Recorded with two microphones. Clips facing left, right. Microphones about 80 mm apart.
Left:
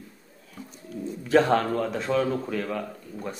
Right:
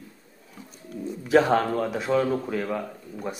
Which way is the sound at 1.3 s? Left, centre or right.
Centre.